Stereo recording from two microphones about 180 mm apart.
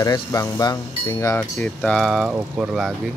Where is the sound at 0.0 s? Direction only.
20° left (ahead or behind).